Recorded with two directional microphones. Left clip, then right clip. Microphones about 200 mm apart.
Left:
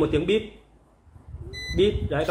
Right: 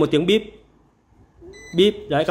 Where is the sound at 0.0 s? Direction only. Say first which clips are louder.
Right 5 dB; 55° right (ahead or behind).